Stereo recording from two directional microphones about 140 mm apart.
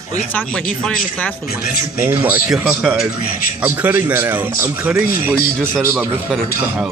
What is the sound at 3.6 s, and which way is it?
Speech, 15° right (ahead or behind).